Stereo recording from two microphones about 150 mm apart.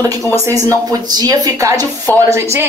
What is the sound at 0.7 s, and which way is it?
Speech, 25° right (ahead or behind).